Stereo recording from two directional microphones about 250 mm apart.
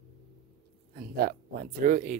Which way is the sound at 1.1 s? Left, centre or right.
Right.